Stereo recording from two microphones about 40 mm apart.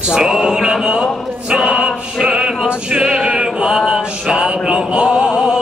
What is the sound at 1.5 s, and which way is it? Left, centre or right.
Music, right.